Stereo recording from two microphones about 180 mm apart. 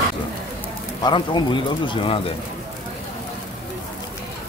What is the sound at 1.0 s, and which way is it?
Speech, 25° left (ahead or behind).